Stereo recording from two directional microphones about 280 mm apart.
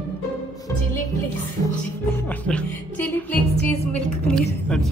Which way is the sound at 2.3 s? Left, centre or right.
Centre.